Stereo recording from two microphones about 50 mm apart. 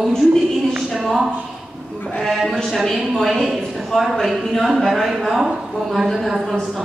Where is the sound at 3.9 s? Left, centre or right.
Centre.